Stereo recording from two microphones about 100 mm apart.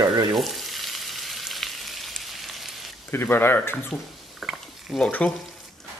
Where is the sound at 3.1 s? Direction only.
20° left (ahead or behind).